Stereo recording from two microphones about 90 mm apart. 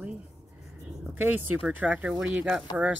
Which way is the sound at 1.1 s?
20° right (ahead or behind).